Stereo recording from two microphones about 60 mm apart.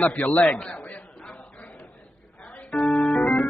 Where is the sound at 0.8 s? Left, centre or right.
Centre.